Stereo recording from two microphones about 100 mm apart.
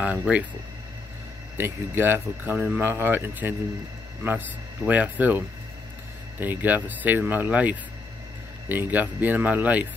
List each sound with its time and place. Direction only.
0.0 s speech: 10° right (ahead or behind)
1.6 s speech: 25° right (ahead or behind)
6.4 s speech: 15° right (ahead or behind)